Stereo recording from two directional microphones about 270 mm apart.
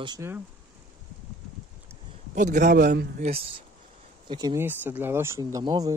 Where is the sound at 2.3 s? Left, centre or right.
Right.